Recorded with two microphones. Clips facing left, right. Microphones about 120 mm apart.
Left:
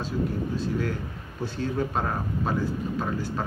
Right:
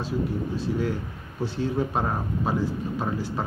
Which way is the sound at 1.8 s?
10° right (ahead or behind).